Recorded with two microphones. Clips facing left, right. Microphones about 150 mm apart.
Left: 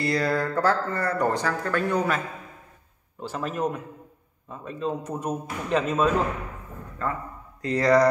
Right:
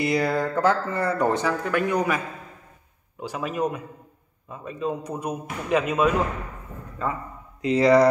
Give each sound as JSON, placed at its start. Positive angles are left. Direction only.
{"t": 0.0, "sound": "speech", "side_deg": -20}
{"t": 7.6, "sound": "speech", "side_deg": -20}